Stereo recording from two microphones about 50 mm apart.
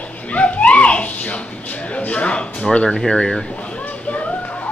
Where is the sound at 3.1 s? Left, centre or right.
Centre.